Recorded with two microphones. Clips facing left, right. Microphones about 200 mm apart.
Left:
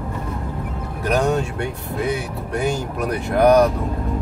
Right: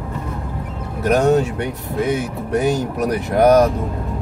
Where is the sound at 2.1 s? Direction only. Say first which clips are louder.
Right 5 dB; 40° right (ahead or behind).